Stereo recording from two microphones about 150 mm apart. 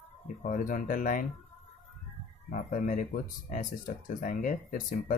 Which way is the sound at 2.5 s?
65° left (ahead or behind).